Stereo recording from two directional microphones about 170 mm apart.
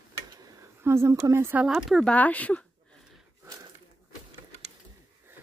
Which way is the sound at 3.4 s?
20° right (ahead or behind).